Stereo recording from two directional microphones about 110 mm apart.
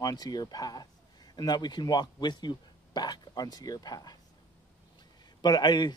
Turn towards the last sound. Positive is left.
turn(degrees=40)  # may be behind; listen again after turning